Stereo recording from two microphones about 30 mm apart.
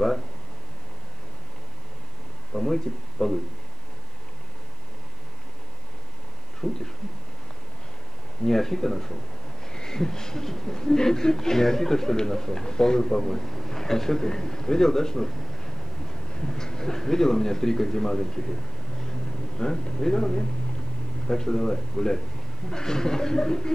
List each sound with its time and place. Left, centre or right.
2.5 s speech: centre
6.6 s speech: centre
8.5 s speech: centre
10.8 s a man's voice: left
20.0 s speech: centre